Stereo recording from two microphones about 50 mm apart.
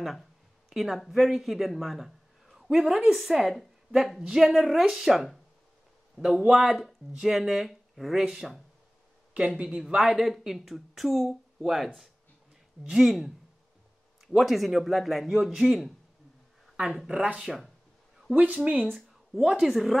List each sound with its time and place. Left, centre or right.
0.0 s speech: centre
2.4 s a sound: centre
3.1 s a woman's voice: centre
10.0 s a woman's voice: centre
17.0 s speech: centre
18.3 s speech: right
18.9 s speech: centre
19.6 s a woman's voice: centre